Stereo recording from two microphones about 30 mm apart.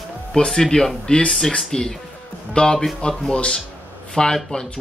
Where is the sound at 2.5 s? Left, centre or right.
Left.